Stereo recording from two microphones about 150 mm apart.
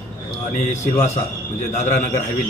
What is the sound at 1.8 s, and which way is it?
Speech, 55° left (ahead or behind).